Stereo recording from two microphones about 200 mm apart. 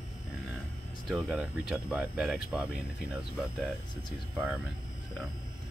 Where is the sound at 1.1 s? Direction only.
Centre (ahead or behind).